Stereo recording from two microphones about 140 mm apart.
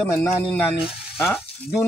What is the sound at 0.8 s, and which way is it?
Frying, centre (ahead or behind).